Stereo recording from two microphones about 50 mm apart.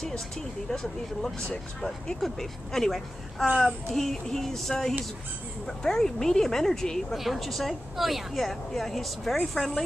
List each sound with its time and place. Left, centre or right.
0.7 s speech: centre